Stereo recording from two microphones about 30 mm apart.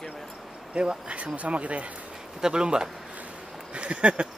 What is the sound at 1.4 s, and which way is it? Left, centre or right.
Speech, right.